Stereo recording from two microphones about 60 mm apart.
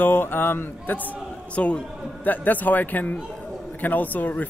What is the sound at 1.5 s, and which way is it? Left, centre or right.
Speech, left.